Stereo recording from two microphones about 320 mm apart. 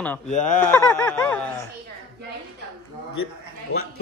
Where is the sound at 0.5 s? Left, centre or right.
Centre.